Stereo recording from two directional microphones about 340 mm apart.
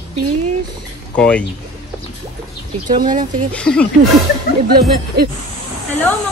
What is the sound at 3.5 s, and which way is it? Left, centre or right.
Speech, centre.